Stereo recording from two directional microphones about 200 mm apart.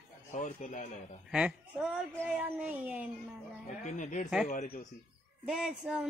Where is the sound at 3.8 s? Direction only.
40° left (ahead or behind).